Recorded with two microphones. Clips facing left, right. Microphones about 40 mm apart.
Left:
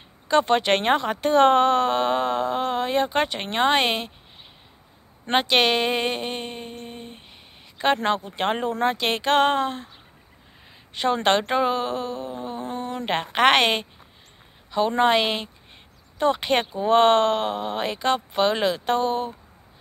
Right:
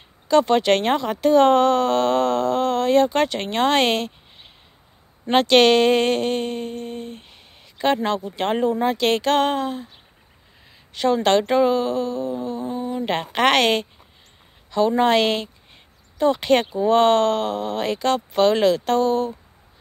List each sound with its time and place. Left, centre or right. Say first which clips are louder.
0.3 s speech: right 3 dB; left
5.3 s speech: right 5 dB; centre
8.4 s speech: right 3 dB; left
11.2 s speech: right 4 dB; left
12.6 s a sound: right 3 dB; left
13.1 s speech: even; left
15.0 s speech: even; centre
16.2 s speech: right 2 dB; left
16.4 s speech: right 4 dB; left